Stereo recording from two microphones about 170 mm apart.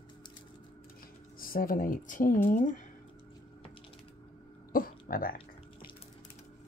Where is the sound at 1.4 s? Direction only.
55° left (ahead or behind).